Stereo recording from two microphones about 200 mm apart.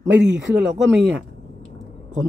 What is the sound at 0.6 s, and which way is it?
Speech, 60° right (ahead or behind).